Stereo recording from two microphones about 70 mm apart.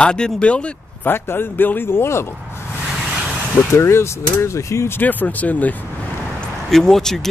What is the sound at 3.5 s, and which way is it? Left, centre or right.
Speech, left.